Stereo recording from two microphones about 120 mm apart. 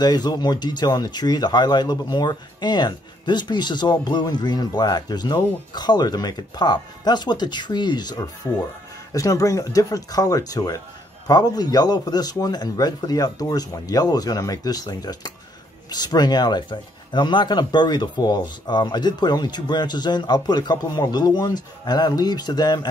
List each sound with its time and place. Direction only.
0.0 s speech: 35° left (ahead or behind)